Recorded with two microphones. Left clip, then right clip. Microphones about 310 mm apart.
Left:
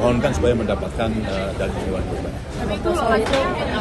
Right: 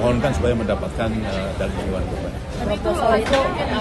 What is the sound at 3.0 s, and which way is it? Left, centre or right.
Speech, right.